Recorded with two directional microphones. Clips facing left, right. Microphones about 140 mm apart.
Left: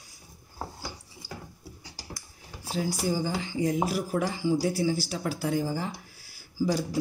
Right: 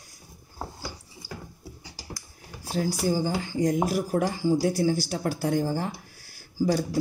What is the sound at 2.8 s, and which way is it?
Speech, 45° right (ahead or behind).